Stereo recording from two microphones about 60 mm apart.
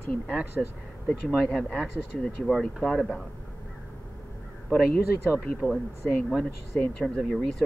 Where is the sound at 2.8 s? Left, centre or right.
Centre.